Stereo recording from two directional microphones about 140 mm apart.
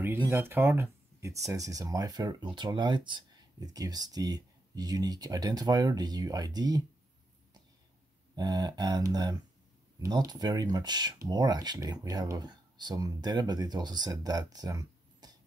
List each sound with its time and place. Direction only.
0.3 s speech: 15° right (ahead or behind)
8.4 s speech: 30° right (ahead or behind)